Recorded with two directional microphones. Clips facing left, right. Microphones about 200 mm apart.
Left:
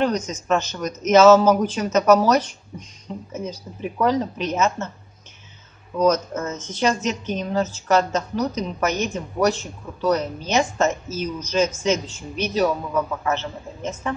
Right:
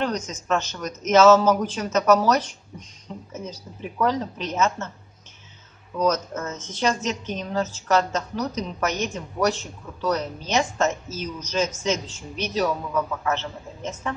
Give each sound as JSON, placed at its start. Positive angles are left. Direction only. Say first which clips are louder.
{"t": 0.0, "sound": "a woman's voice", "louder": "left 4 dB", "side_deg": 10}
{"t": 6.0, "sound": "a woman's voice", "louder": "left 4 dB", "side_deg": 5}